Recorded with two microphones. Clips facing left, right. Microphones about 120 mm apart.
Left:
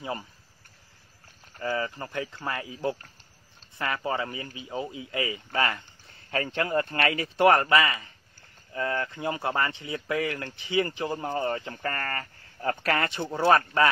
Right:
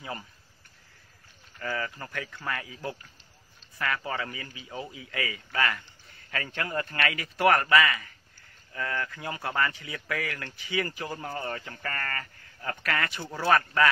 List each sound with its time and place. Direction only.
1.6 s speech: 25° left (ahead or behind)